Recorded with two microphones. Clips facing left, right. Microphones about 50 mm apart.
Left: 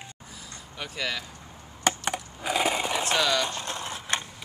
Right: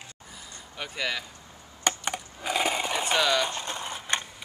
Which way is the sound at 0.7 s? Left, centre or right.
Centre.